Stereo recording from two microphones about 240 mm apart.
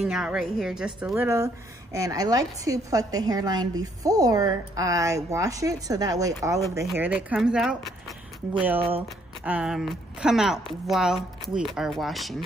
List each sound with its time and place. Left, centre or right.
0.0 s a woman's voice: centre